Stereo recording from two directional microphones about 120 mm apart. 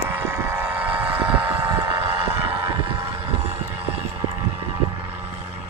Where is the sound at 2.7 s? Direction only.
45° right (ahead or behind).